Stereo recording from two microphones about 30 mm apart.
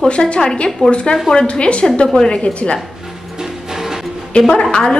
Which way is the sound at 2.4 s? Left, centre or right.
Left.